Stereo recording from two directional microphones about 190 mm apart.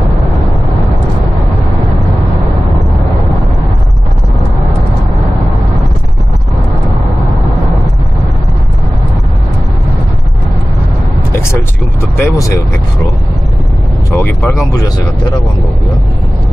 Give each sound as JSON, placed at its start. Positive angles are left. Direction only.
{"t": 12.2, "sound": "speech", "side_deg": 15}
{"t": 14.1, "sound": "speech", "side_deg": 10}